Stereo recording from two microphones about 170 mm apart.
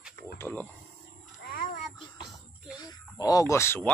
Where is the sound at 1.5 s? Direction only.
55° left (ahead or behind).